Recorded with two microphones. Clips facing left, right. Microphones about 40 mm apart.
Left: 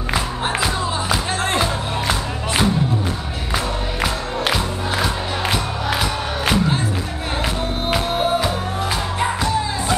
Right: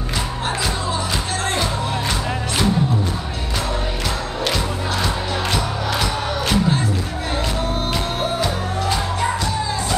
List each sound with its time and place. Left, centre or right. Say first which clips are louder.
0.6 s music: left 2 dB; centre
7.9 s music: left 3 dB; centre